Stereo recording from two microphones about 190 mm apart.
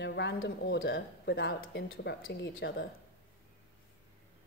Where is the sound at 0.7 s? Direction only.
70° left (ahead or behind).